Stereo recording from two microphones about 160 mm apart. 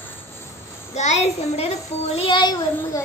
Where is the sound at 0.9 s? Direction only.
45° left (ahead or behind); by 2.6 s 30° left (ahead or behind).